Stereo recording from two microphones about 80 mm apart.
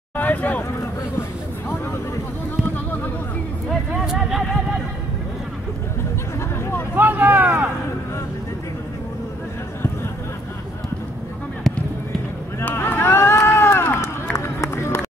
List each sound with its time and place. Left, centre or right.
0.2 s speech: centre
4.0 s vehicle: centre
7.0 s vehicle: right
11.7 s basketball bounce: centre
12.5 s a sound: left
14.3 s run: left